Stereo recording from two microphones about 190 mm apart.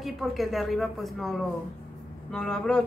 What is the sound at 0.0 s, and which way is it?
A woman's voice, centre (ahead or behind).